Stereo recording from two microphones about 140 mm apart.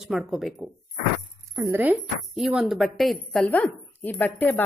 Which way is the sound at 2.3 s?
Centre (ahead or behind).